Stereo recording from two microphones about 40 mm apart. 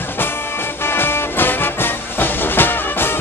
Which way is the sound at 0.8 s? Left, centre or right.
Left.